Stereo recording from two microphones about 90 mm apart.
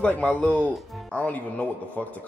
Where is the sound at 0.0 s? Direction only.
15° left (ahead or behind).